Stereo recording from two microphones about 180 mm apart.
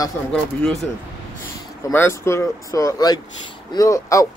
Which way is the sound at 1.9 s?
15° left (ahead or behind).